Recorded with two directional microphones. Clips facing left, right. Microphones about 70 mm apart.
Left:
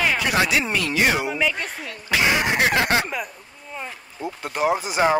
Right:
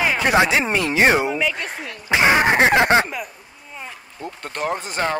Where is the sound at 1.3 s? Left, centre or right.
Centre.